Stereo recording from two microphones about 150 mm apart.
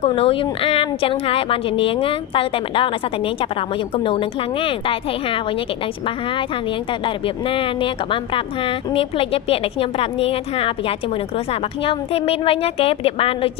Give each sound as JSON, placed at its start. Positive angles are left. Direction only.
{"t": 0.0, "sound": "speech", "side_deg": 40}
{"t": 3.9, "sound": "speech", "side_deg": 35}
{"t": 7.4, "sound": "speech", "side_deg": 35}